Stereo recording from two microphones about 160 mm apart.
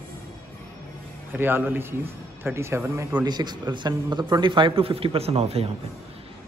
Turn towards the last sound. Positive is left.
turn(degrees=-40)  # may be behind; listen again after turning